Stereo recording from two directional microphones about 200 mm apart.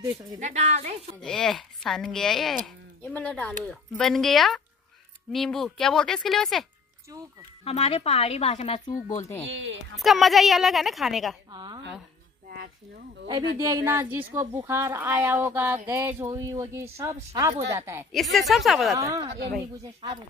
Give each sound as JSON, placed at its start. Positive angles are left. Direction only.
{"t": 0.1, "sound": "speech", "side_deg": -35}
{"t": 1.2, "sound": "speech", "side_deg": 5}
{"t": 7.6, "sound": "speech", "side_deg": 30}
{"t": 9.5, "sound": "a woman's voice", "side_deg": -65}
{"t": 9.9, "sound": "speech", "side_deg": 0}
{"t": 11.5, "sound": "speech", "side_deg": -20}
{"t": 12.4, "sound": "a sound", "side_deg": -50}
{"t": 13.6, "sound": "speech", "side_deg": -15}
{"t": 18.1, "sound": "speech", "side_deg": 0}
{"t": 19.8, "sound": "speech", "side_deg": -20}